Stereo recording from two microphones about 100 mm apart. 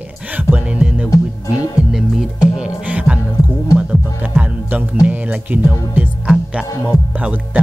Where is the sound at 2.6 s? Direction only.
10° right (ahead or behind).